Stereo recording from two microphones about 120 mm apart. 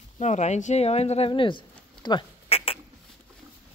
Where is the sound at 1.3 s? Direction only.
45° left (ahead or behind).